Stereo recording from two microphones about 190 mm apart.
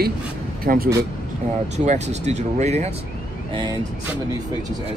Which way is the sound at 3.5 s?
25° right (ahead or behind).